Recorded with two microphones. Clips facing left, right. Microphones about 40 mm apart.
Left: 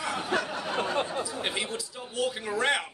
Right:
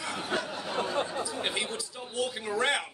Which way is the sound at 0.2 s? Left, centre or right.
Left.